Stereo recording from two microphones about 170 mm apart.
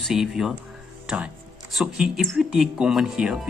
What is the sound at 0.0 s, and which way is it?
Speech, 5° right (ahead or behind).